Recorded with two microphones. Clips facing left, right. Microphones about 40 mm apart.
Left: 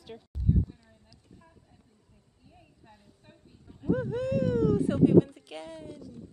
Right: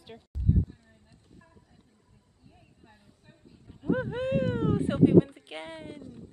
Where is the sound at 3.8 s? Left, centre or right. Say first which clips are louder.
Even; right.